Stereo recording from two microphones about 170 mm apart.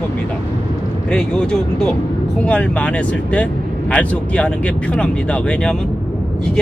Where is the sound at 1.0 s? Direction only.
5° left (ahead or behind).